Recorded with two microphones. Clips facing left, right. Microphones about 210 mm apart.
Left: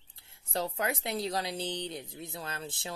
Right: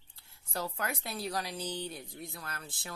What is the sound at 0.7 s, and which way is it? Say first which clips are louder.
Speech: left 5 dB; 20° left (ahead or behind).